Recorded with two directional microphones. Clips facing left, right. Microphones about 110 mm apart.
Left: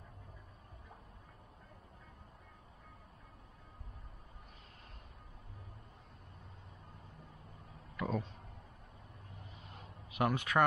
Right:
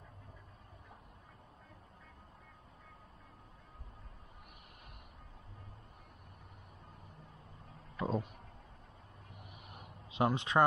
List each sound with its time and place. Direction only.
7.9 s a sound: 30° right (ahead or behind)
9.4 s vehicle: 15° right (ahead or behind)
10.1 s speech: 25° right (ahead or behind)